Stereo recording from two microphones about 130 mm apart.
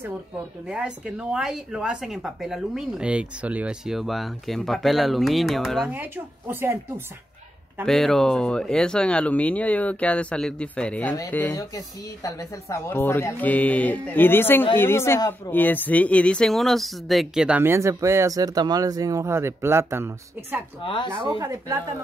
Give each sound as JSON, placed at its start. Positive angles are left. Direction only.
{"t": 0.7, "sound": "speech", "side_deg": -5}
{"t": 5.9, "sound": "speech", "side_deg": -15}
{"t": 7.8, "sound": "a woman's voice", "side_deg": 5}
{"t": 15.5, "sound": "speech", "side_deg": 15}
{"t": 20.8, "sound": "speech", "side_deg": 35}
{"t": 21.4, "sound": "speech", "side_deg": -25}